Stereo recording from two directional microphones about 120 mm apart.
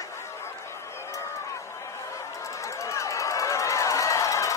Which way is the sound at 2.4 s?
25° left (ahead or behind).